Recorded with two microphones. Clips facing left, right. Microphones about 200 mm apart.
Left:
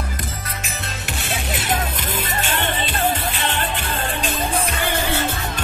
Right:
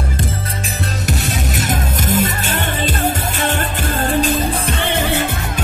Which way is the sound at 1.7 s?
45° right (ahead or behind).